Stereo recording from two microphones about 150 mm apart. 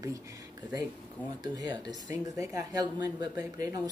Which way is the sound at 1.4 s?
25° right (ahead or behind).